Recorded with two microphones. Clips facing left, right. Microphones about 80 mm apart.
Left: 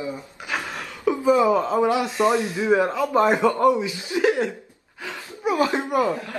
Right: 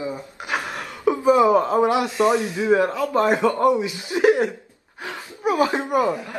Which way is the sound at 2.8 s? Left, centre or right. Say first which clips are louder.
Even; centre.